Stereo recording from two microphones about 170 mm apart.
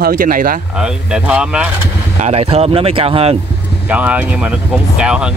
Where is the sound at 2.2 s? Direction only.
40° right (ahead or behind).